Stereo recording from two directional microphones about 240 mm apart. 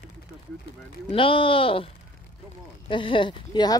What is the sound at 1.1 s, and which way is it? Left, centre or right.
Speech, left.